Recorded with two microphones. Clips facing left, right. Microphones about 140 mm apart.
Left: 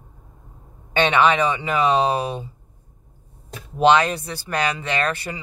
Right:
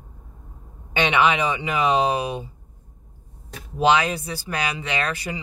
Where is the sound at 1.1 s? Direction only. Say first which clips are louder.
Left 1 dB; 10° right (ahead or behind).